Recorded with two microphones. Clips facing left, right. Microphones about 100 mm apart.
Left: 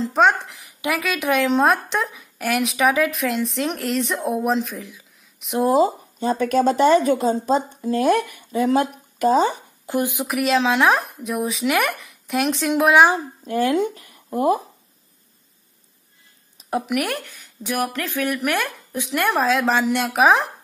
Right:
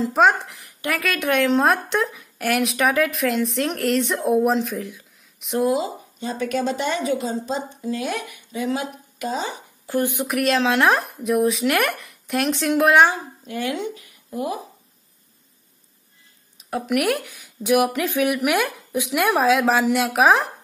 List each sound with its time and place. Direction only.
0.0 s speech: centre (ahead or behind)
5.6 s a woman's voice: 40° left (ahead or behind)
9.8 s speech: 15° left (ahead or behind)
10.1 s speech: centre (ahead or behind)
13.1 s speech: 35° left (ahead or behind)
16.8 s speech: centre (ahead or behind)